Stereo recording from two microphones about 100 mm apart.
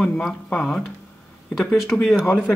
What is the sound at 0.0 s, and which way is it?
Speech, 5° left (ahead or behind).